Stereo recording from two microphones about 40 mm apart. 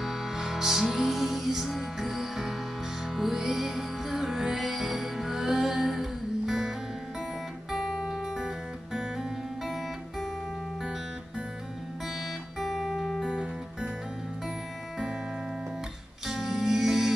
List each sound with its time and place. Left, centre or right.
0.0 s music: centre
7.7 s music: centre
12.5 s music: centre
13.2 s music: right
16.3 s music: centre